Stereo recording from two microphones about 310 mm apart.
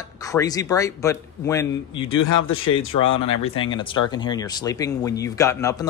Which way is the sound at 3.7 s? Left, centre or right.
Centre.